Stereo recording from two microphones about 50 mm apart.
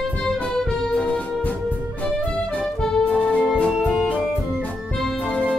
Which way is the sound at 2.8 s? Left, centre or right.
Centre.